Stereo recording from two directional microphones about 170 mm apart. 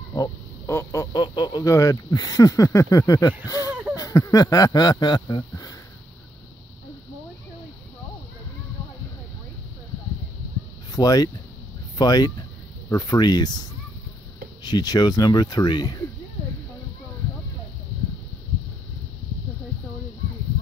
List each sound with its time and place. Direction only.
0.1 s speech: 20° left (ahead or behind)
3.4 s a sound: 20° left (ahead or behind)
10.9 s speech: 20° left (ahead or behind)